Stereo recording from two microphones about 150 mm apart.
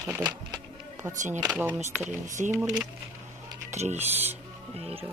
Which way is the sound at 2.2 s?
55° right (ahead or behind).